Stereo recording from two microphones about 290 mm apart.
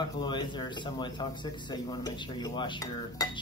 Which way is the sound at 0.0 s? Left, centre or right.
Centre.